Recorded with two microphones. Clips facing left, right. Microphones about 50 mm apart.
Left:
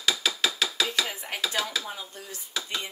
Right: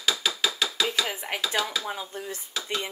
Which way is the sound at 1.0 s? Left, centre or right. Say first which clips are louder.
Right 2 dB; right.